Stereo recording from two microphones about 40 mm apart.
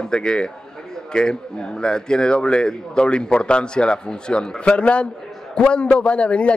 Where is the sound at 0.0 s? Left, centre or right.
Left.